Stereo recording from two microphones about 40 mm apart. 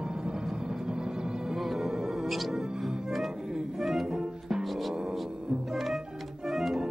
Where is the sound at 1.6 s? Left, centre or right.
Centre.